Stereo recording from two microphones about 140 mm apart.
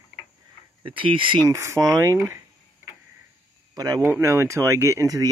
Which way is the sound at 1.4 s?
20° right (ahead or behind).